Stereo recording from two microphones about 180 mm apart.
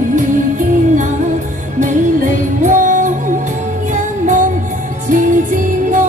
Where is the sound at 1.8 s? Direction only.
45° right (ahead or behind).